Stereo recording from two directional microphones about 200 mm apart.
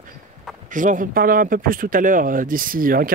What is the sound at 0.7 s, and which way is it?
Speech, 40° right (ahead or behind).